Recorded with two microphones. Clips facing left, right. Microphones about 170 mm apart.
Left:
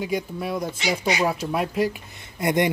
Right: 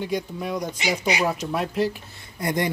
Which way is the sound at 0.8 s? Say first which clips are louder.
Even; 10° right (ahead or behind).